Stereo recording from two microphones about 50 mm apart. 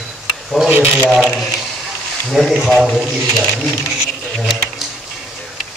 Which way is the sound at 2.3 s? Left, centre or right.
Centre.